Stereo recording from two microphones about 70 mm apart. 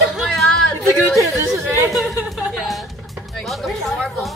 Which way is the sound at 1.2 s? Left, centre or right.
Right.